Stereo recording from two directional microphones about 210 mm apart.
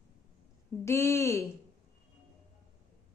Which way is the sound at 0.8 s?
15° left (ahead or behind).